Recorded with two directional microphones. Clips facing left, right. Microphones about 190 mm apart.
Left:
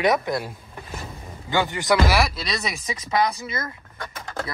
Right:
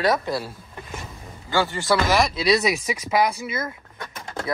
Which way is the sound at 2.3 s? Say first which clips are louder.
Right 9 dB; 5° right (ahead or behind).